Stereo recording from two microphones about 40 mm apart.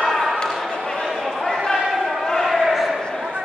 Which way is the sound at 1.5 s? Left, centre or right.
Centre.